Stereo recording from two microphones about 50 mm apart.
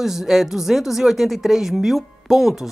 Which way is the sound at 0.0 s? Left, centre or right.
Centre.